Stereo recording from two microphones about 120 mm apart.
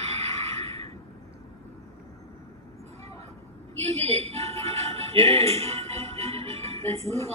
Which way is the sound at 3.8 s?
60° right (ahead or behind).